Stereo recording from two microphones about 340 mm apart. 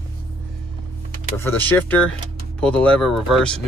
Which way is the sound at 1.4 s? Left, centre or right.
Centre.